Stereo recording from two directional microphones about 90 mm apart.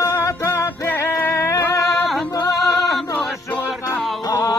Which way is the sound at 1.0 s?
30° left (ahead or behind).